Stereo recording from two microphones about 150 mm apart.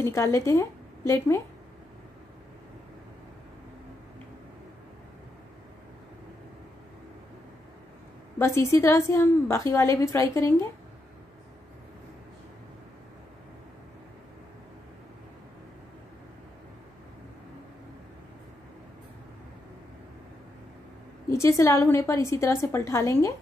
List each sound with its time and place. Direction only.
0.0 s a woman's voice: 20° left (ahead or behind)
8.4 s a woman's voice: 20° left (ahead or behind)
21.3 s a woman's voice: 20° left (ahead or behind)